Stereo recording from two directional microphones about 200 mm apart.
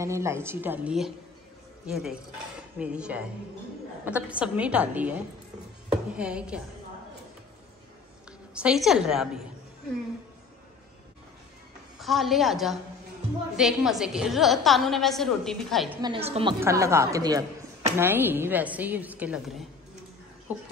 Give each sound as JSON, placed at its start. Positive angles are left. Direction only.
{"t": 0.0, "sound": "a woman's voice", "side_deg": -15}
{"t": 8.3, "sound": "a woman's voice", "side_deg": -5}
{"t": 12.0, "sound": "a woman's voice", "side_deg": 0}
{"t": 16.0, "sound": "a woman's voice", "side_deg": -25}
{"t": 16.5, "sound": "a woman's voice", "side_deg": -15}